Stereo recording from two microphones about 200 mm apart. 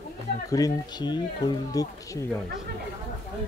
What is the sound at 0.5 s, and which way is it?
Speech, 20° left (ahead or behind).